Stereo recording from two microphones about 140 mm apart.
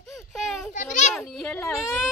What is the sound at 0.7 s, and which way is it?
Speech, 65° left (ahead or behind).